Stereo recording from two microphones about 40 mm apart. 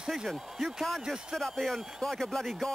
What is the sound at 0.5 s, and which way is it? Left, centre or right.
Speech, centre.